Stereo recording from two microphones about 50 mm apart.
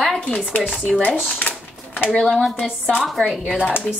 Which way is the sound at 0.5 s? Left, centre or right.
Left.